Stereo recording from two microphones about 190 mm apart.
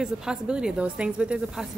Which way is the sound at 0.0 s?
5° right (ahead or behind).